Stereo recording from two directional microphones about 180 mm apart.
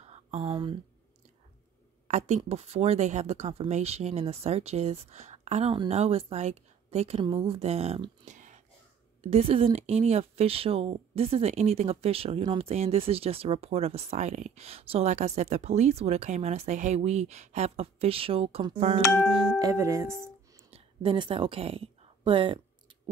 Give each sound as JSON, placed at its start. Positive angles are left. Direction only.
{"t": 0.0, "sound": "a sound", "side_deg": -35}
{"t": 2.0, "sound": "speech", "side_deg": -40}
{"t": 19.6, "sound": "speech", "side_deg": -15}
{"t": 20.7, "sound": "speech", "side_deg": -30}